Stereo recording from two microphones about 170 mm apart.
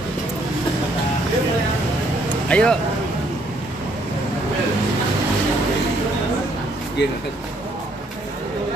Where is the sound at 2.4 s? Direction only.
5° left (ahead or behind).